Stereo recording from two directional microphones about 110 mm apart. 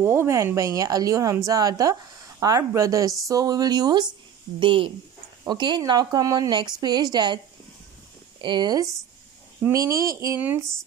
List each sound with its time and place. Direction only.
0.0 s a woman's voice: 25° right (ahead or behind); by 4.1 s 40° right (ahead or behind)
4.6 s a woman's voice: 50° right (ahead or behind)
8.4 s speech: 45° right (ahead or behind)
9.7 s speech: 30° right (ahead or behind)